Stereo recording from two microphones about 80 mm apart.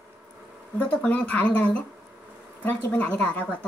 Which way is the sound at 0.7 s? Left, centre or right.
Centre.